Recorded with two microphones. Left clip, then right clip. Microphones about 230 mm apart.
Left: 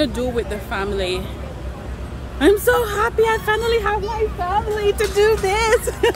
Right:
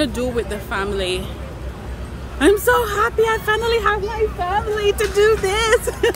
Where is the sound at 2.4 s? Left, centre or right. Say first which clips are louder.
Even; centre.